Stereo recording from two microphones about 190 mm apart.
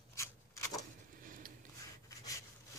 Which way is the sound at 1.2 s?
45° right (ahead or behind).